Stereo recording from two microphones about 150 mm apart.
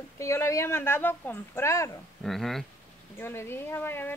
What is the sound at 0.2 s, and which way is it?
Speech, 20° left (ahead or behind).